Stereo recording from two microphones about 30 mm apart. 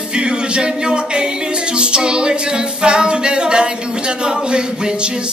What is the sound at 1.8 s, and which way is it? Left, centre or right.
A capella, right.